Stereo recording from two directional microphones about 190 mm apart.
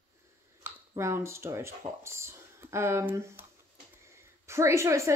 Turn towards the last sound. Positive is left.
turn(degrees=-15)  # may be behind; listen again after turning